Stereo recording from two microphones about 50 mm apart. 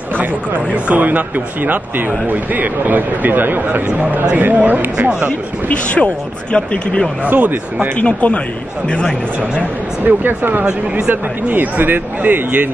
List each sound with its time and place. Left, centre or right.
0.8 s speech: right
5.7 s speech: left
7.2 s speech: right
8.0 s speech: left
10.0 s speech: right